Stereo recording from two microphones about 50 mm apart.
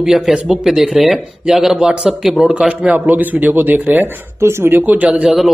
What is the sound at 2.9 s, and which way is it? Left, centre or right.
A man's voice, right.